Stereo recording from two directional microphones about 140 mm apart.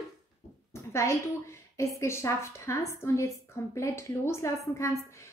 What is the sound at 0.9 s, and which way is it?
A woman's voice, 20° left (ahead or behind).